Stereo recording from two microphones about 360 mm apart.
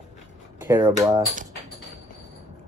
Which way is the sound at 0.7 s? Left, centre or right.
Centre.